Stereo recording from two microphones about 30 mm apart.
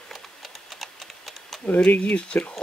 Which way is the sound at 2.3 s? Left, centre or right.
Left.